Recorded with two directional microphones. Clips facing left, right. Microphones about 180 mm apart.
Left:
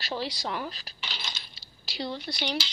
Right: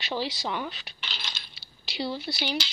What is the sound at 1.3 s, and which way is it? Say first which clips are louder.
Coin: even; centre (ahead or behind).